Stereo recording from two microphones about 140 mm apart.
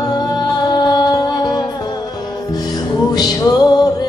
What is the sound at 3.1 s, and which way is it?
Music, 25° left (ahead or behind).